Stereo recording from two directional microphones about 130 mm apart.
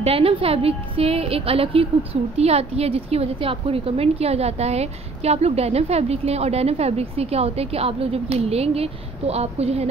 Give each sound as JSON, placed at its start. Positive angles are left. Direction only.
{"t": 0.0, "sound": "a woman's voice", "side_deg": -45}